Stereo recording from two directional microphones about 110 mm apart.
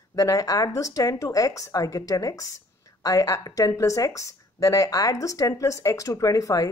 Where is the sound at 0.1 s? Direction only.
30° left (ahead or behind).